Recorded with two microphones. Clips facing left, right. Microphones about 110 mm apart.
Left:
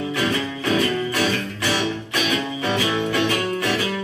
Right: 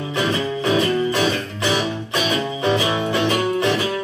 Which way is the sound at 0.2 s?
20° right (ahead or behind).